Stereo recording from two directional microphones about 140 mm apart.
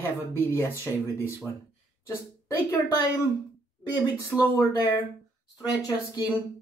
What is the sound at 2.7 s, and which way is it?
Speech, 20° left (ahead or behind).